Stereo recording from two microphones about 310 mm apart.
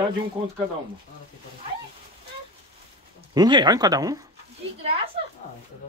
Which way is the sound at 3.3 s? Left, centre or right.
Centre.